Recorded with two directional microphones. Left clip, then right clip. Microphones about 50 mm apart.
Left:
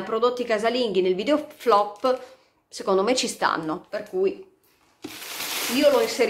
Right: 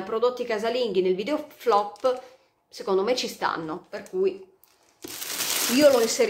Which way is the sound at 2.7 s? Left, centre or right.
Left.